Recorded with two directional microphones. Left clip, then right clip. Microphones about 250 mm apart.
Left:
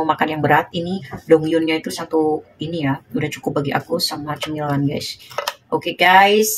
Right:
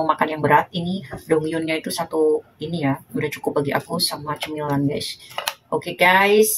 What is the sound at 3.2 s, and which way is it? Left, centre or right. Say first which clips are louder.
Speech: even; centre.